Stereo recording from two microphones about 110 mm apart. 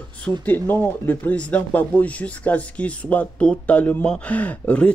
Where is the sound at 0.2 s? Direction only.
15° left (ahead or behind).